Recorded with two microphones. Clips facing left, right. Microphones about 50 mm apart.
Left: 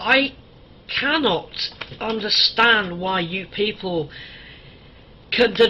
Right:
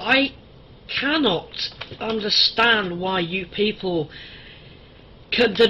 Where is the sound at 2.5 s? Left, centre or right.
Centre.